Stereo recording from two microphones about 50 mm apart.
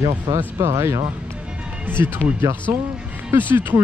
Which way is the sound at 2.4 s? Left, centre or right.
Right.